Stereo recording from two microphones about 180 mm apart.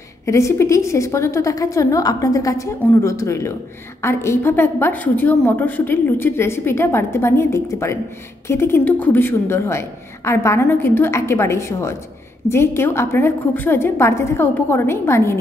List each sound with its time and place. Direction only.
0.2 s a woman's voice: 15° left (ahead or behind)